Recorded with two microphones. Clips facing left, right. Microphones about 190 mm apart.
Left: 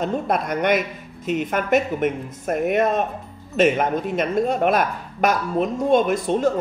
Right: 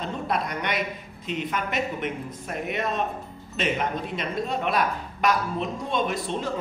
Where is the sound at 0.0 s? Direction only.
50° left (ahead or behind).